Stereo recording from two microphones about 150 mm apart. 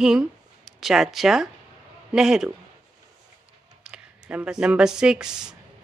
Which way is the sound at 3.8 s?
10° right (ahead or behind).